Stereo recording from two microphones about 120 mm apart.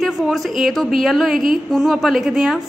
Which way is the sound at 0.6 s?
Centre (ahead or behind).